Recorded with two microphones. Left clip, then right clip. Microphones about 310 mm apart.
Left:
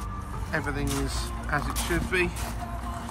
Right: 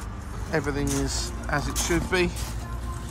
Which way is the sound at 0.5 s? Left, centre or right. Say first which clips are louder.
Right 3 dB; centre.